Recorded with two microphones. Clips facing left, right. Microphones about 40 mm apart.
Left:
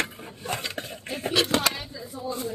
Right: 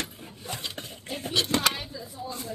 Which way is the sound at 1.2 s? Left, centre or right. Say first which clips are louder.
Left 4 dB; left.